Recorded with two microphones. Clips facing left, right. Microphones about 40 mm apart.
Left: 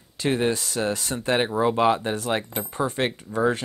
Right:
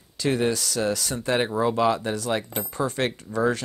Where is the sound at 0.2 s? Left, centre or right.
Left.